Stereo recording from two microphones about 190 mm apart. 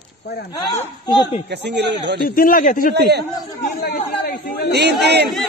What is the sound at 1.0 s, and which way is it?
Speech, 20° left (ahead or behind).